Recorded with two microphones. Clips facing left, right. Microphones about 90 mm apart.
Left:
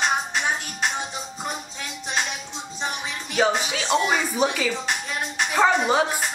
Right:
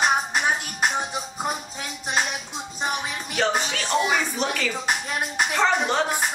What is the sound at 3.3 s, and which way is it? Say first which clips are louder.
Speech: left 2 dB; 5° left (ahead or behind).